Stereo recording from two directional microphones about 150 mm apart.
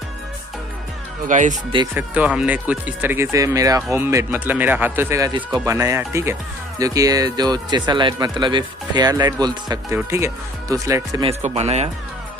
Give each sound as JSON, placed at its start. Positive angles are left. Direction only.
{"t": 1.3, "sound": "speech", "side_deg": -55}
{"t": 2.0, "sound": "speech", "side_deg": -10}
{"t": 11.4, "sound": "speech", "side_deg": -45}